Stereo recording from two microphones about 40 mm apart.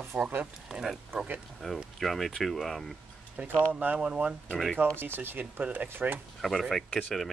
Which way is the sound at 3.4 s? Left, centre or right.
Right.